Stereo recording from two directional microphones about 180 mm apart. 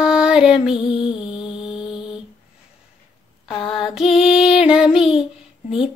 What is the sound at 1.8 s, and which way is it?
Mantra, 30° left (ahead or behind).